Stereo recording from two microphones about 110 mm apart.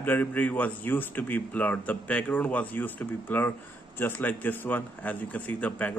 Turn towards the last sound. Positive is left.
turn(degrees=15)  # may be behind; listen again after turning